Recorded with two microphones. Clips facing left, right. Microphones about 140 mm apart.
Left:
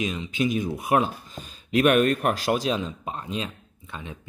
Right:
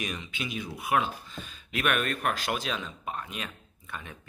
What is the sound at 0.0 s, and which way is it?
Speech, 25° left (ahead or behind).